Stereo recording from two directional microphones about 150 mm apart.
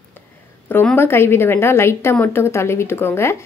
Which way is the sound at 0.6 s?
15° left (ahead or behind).